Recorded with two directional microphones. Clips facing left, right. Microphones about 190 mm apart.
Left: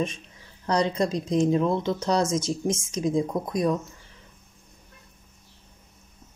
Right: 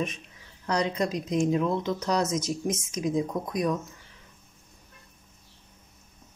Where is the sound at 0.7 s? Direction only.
30° left (ahead or behind).